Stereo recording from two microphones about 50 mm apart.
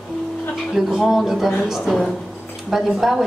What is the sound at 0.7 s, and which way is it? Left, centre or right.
A woman's voice, centre.